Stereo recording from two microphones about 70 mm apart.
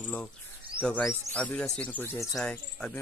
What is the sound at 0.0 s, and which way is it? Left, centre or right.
Bird, left.